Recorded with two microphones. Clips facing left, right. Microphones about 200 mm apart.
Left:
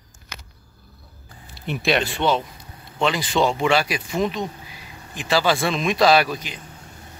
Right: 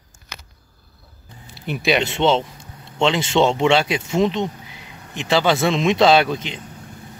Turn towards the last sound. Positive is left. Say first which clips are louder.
# right 2 dB
turn(degrees=-25)  # may be behind; listen again after turning